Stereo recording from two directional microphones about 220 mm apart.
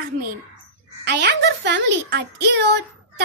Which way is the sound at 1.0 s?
50° right (ahead or behind).